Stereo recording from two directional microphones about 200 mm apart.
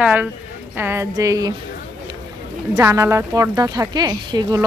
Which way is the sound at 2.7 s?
15° right (ahead or behind).